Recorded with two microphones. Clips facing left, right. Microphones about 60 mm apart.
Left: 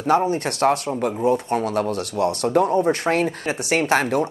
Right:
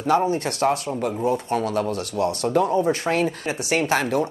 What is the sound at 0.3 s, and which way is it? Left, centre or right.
Speech, left.